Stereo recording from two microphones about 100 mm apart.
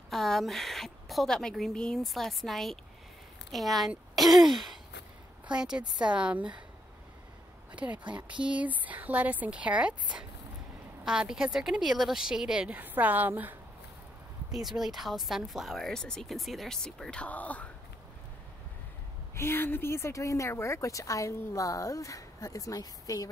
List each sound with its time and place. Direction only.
0.1 s a woman's voice: 5° left (ahead or behind)
7.7 s a woman's voice: 15° right (ahead or behind)
11.1 s a woman's voice: 5° right (ahead or behind)
14.5 s speech: 5° right (ahead or behind); by 17.6 s 15° left (ahead or behind)
19.3 s speech: 25° left (ahead or behind)